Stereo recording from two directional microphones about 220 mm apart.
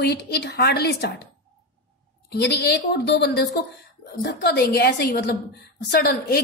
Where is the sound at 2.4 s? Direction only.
50° left (ahead or behind).